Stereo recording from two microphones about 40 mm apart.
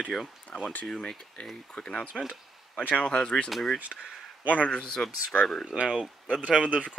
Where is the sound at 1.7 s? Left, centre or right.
Left.